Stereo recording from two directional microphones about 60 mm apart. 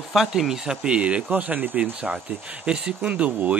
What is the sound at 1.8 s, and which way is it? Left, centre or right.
A man's voice, centre.